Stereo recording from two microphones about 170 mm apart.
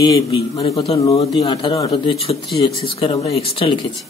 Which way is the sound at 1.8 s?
35° left (ahead or behind).